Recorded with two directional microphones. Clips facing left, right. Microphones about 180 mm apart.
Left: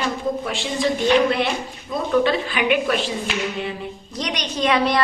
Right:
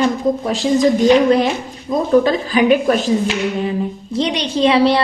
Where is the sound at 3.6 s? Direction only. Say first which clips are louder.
Right 9 dB; 30° right (ahead or behind).